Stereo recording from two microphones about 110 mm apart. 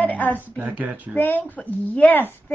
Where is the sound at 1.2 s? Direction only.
20° left (ahead or behind).